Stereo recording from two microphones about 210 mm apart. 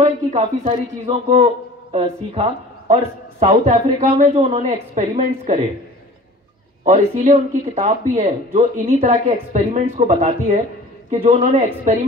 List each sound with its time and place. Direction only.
0.0 s speech: 30° right (ahead or behind)
6.8 s speech: 35° right (ahead or behind)